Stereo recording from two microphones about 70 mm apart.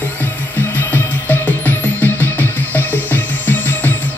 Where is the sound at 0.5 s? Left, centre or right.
Left.